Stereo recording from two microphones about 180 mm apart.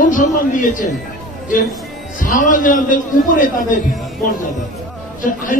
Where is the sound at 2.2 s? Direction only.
45° left (ahead or behind).